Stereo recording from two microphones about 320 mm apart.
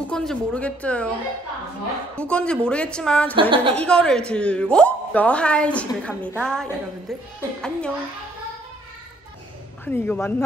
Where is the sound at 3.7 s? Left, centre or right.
Centre.